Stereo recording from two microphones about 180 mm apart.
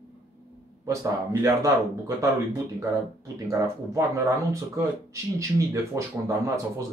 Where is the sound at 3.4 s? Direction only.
15° right (ahead or behind).